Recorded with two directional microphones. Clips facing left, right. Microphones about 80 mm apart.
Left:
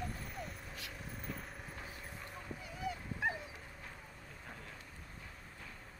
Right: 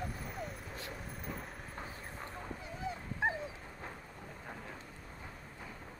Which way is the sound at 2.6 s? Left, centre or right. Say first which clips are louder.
Left 1 dB; right.